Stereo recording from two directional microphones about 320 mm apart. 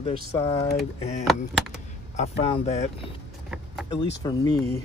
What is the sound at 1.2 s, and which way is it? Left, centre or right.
Speech, centre.